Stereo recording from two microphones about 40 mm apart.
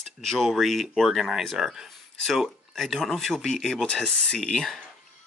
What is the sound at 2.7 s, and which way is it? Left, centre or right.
Speech, centre.